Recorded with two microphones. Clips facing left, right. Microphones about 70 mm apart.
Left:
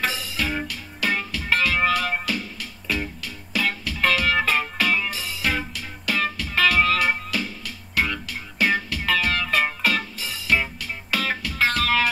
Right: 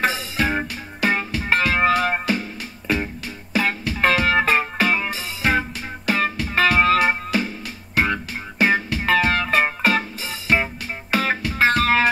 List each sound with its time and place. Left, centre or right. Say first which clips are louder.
0.0 s music: right 5 dB; right